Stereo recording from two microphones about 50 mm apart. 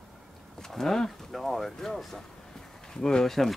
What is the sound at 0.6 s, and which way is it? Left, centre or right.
Speech, centre.